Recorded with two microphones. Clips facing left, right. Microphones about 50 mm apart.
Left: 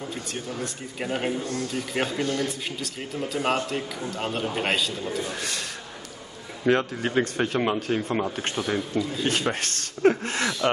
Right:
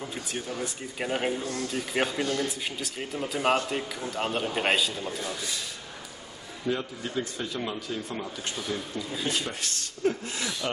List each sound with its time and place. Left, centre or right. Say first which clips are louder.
0.5 s speech: left 1 dB; centre
5.3 s a man's voice: left 3 dB; left